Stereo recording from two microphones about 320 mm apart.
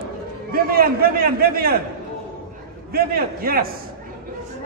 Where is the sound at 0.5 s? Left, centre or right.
Right.